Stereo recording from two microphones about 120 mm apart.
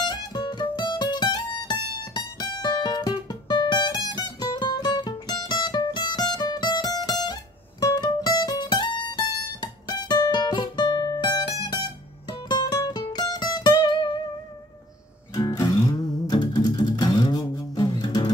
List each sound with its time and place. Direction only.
0.0 s music: 35° left (ahead or behind)
15.3 s music: 30° left (ahead or behind)